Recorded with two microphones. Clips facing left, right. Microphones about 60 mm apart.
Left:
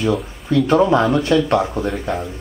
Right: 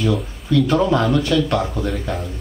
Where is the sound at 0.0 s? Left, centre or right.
Centre.